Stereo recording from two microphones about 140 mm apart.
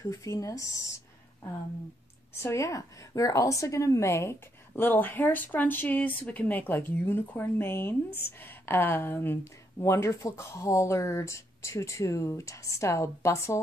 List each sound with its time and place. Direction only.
0.0 s a woman's voice: 25° left (ahead or behind)
2.3 s a woman's voice: 20° left (ahead or behind)